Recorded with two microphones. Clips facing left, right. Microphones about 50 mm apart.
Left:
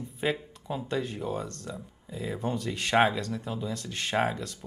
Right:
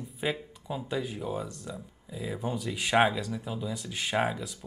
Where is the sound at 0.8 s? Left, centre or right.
Centre.